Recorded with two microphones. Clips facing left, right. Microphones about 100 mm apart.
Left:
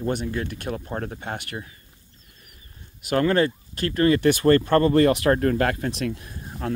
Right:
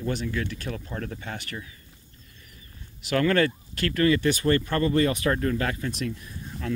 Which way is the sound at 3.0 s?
45° left (ahead or behind).